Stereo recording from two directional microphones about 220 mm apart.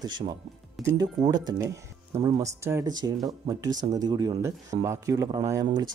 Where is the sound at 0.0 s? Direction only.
20° right (ahead or behind).